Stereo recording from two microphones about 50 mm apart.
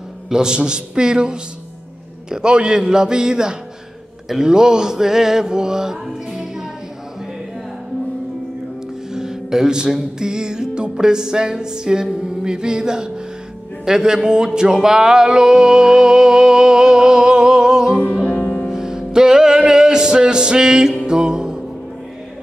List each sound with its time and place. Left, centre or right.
0.3 s music: centre
9.1 s music: centre